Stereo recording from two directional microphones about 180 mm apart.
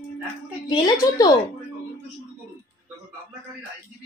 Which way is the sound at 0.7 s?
20° left (ahead or behind).